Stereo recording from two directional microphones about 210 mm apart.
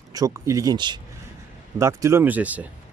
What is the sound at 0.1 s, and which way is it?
Speech, 15° right (ahead or behind).